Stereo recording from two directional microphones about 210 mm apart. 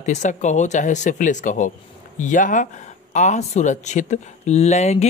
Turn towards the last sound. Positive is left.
turn(degrees=30)  # may be behind; listen again after turning